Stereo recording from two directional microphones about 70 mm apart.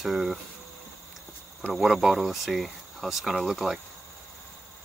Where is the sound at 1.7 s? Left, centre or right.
Centre.